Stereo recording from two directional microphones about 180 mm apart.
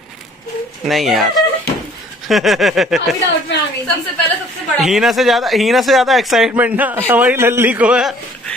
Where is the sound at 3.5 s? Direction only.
75° left (ahead or behind).